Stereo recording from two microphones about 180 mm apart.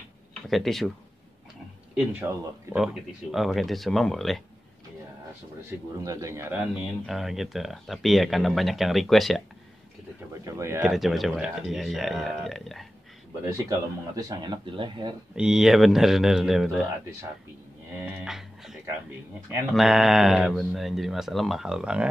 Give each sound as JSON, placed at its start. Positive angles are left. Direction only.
{"t": 0.3, "sound": "speech", "side_deg": 0}
{"t": 2.0, "sound": "speech", "side_deg": -10}
{"t": 6.0, "sound": "speech", "side_deg": -15}
{"t": 6.7, "sound": "speech", "side_deg": 0}
{"t": 10.3, "sound": "speech", "side_deg": -15}
{"t": 10.9, "sound": "speech", "side_deg": 0}
{"t": 13.5, "sound": "speech", "side_deg": -20}
{"t": 15.3, "sound": "speech", "side_deg": -5}
{"t": 18.2, "sound": "music", "side_deg": 0}
{"t": 19.7, "sound": "speech", "side_deg": 0}